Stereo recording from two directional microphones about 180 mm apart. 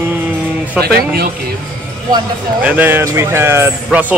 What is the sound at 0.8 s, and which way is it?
Speech, 60° right (ahead or behind).